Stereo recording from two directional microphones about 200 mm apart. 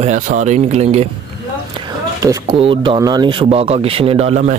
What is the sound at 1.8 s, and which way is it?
Speech, 20° right (ahead or behind).